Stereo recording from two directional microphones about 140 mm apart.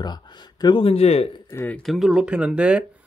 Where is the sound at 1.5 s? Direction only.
15° left (ahead or behind).